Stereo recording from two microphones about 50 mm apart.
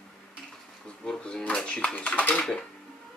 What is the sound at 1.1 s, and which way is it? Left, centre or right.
Drawer open or close, centre.